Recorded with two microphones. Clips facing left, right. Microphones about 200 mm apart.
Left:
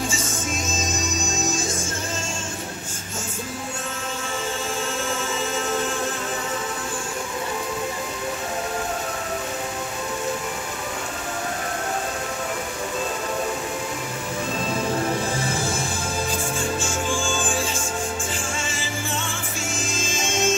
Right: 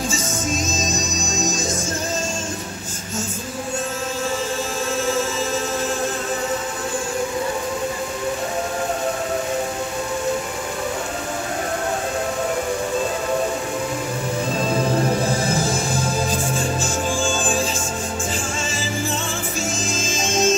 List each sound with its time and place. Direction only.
0.7 s music: 40° right (ahead or behind)
15.4 s music: 40° right (ahead or behind)
19.9 s music: 40° right (ahead or behind)